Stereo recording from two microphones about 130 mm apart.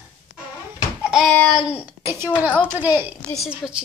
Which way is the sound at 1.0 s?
Centre (ahead or behind).